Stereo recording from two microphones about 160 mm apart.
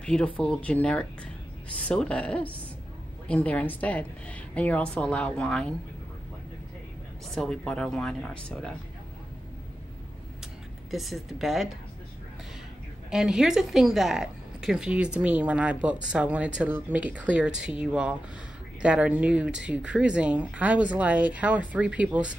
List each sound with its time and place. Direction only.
0.0 s a woman's voice: 5° left (ahead or behind)
7.2 s speech: 5° left (ahead or behind)
10.9 s speech: centre (ahead or behind)
13.1 s a woman's voice: 5° right (ahead or behind)